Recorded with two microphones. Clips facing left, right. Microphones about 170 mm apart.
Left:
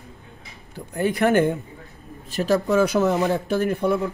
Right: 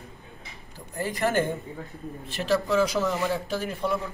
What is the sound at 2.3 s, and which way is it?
Speech, 45° left (ahead or behind).